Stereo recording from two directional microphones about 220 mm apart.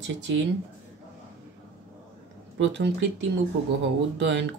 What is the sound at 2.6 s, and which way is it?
Speech, 55° right (ahead or behind).